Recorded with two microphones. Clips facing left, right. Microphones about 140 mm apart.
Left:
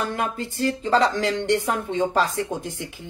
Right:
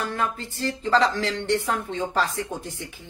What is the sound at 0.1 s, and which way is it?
Speech, 15° left (ahead or behind).